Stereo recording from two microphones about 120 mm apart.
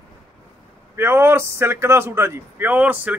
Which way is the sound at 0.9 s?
20° right (ahead or behind).